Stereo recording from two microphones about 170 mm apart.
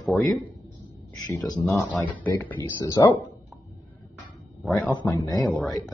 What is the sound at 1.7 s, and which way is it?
Speech, 5° left (ahead or behind).